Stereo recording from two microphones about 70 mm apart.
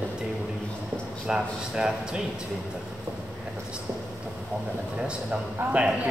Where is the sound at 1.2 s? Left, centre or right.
Centre.